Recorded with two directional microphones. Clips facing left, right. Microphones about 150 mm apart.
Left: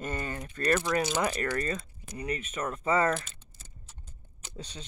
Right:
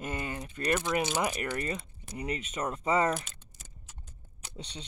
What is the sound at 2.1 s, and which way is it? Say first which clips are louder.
Speech: left 1 dB; 25° right (ahead or behind).